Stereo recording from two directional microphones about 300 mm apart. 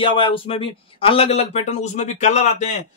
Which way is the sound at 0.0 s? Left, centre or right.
Centre.